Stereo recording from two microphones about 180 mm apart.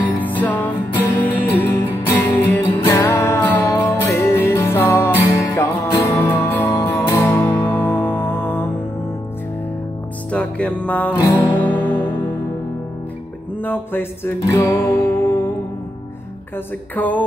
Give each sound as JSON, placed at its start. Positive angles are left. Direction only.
{"t": 0.0, "sound": "music", "side_deg": 10}
{"t": 10.3, "sound": "music", "side_deg": 5}
{"t": 13.6, "sound": "music", "side_deg": 10}
{"t": 16.9, "sound": "music", "side_deg": 10}